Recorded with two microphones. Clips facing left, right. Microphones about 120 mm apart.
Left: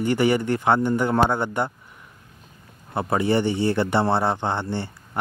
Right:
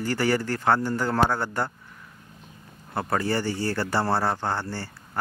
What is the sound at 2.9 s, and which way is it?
A man's voice, 20° left (ahead or behind).